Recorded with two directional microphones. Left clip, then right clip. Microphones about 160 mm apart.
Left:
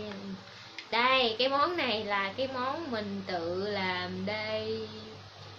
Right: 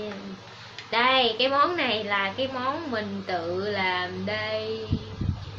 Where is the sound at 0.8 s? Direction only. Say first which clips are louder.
Right 5 dB; 15° left (ahead or behind).